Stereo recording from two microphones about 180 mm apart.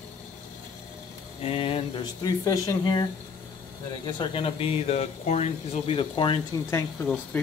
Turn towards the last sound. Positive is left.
turn(degrees=15)  # may be behind; listen again after turning